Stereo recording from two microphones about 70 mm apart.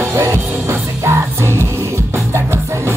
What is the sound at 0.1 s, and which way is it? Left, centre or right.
Music, right.